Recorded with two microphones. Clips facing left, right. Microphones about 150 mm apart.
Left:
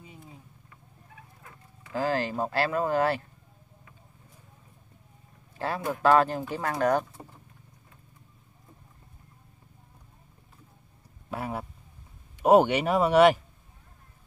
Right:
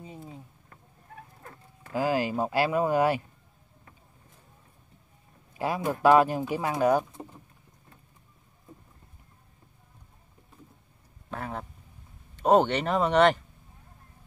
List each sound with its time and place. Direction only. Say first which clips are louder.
0.0 s a sound: right 6 dB; 30° right (ahead or behind)
0.7 s patter: right 3 dB; 45° right (ahead or behind)
1.9 s speech: right 1 dB; 10° right (ahead or behind)
5.6 s speech: right 2 dB; 15° right (ahead or behind)
11.2 s a sound: left 2 dB; 10° left (ahead or behind)
12.4 s speech: left 2 dB; 10° left (ahead or behind)